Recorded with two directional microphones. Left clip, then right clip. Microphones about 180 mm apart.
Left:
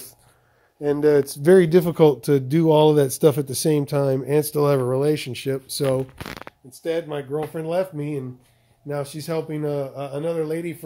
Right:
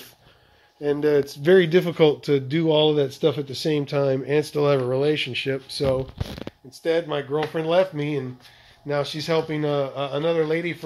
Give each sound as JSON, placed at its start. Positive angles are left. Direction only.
{"t": 0.8, "sound": "speech", "side_deg": 40}
{"t": 6.8, "sound": "speech", "side_deg": 10}